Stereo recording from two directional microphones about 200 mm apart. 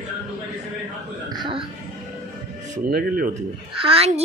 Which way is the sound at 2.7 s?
45° right (ahead or behind).